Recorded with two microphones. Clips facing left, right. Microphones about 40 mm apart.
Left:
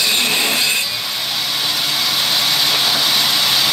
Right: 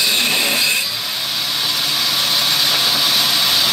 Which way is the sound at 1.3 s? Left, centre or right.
Centre.